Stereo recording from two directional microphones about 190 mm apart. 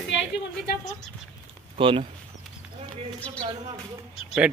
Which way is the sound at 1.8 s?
30° right (ahead or behind).